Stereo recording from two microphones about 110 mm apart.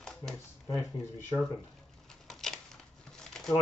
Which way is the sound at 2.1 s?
5° left (ahead or behind).